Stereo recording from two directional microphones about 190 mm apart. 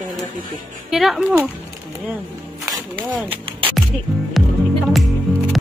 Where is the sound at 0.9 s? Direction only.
Centre (ahead or behind).